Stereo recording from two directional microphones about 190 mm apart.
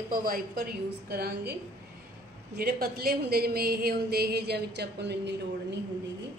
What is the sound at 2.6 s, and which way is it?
Speech, 50° right (ahead or behind).